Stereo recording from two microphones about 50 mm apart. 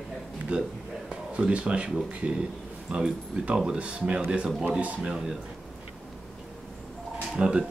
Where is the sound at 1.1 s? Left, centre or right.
Centre.